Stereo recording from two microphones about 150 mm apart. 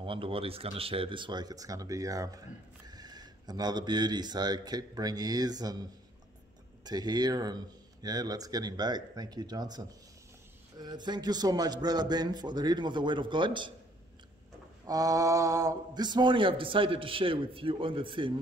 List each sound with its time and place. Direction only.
0.0 s a man's voice: 35° right (ahead or behind)
14.9 s speech: 25° right (ahead or behind)